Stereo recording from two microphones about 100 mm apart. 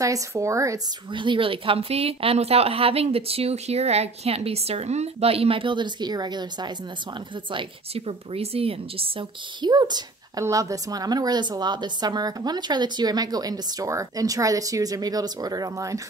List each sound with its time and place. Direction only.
0.0 s a woman's voice: 30° right (ahead or behind)
1.1 s speech: 55° right (ahead or behind)
7.9 s speech: 80° right
9.6 s a woman's voice: 45° right (ahead or behind)